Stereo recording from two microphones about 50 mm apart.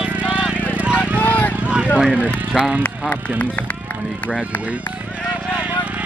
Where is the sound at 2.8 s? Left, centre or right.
Left.